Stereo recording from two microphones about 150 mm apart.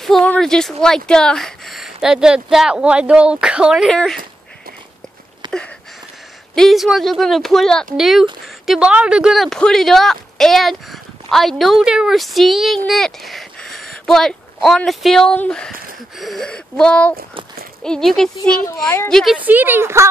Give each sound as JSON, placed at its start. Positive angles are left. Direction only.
{"t": 0.0, "sound": "speech", "side_deg": 5}
{"t": 5.4, "sound": "a sound", "side_deg": -30}
{"t": 6.5, "sound": "speech", "side_deg": 0}
{"t": 19.3, "sound": "a woman's voice", "side_deg": -10}